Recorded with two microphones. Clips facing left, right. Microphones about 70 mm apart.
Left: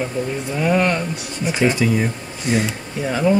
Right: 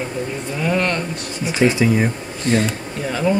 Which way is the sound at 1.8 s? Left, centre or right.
Centre.